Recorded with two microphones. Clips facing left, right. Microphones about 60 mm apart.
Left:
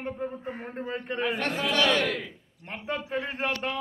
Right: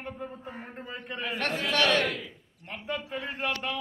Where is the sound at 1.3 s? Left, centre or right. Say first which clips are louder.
Right 2 dB; centre.